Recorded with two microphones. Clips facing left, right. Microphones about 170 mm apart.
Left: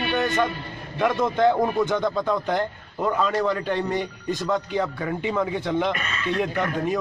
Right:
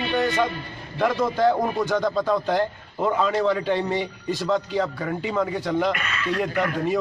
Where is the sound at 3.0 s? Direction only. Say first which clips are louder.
Right 1 dB; 5° right (ahead or behind).